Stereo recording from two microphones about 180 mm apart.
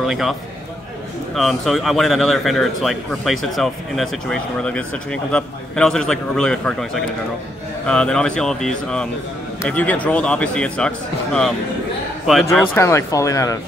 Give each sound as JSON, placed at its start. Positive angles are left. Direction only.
{"t": 0.0, "sound": "a man's voice", "side_deg": 0}
{"t": 12.7, "sound": "speech", "side_deg": 15}